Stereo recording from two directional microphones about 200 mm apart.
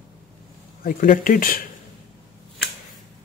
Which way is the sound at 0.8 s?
45° left (ahead or behind).